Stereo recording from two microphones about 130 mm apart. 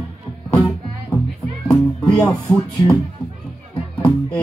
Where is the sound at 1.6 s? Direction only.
10° left (ahead or behind).